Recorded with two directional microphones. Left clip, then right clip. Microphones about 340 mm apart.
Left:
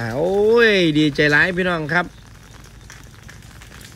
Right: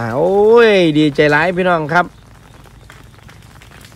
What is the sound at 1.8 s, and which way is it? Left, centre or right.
Speech, right.